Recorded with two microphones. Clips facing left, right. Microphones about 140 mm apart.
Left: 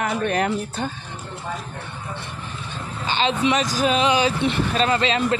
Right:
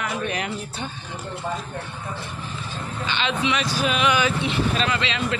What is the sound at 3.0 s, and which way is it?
Speech, 40° left (ahead or behind).